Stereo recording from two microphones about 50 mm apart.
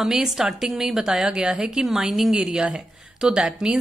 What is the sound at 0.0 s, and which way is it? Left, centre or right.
A woman's voice, centre.